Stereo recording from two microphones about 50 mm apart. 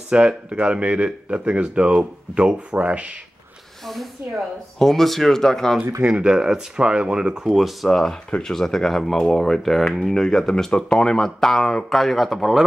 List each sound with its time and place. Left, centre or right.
0.1 s speech: centre
3.8 s speech: centre
6.0 s speech: right
6.3 s speech: centre
7.5 s speech: centre